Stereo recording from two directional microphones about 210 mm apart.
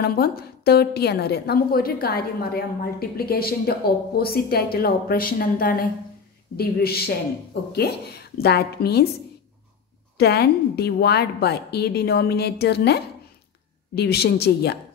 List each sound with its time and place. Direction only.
0.0 s a woman's voice: 45° left (ahead or behind)
10.1 s a woman's voice: 50° left (ahead or behind)